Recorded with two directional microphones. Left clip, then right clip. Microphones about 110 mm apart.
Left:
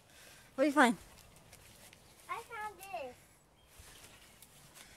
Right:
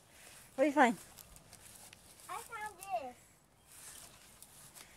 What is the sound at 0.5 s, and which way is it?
Speech, 20° left (ahead or behind).